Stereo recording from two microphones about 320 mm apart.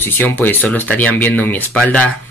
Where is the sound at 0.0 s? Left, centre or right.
Centre.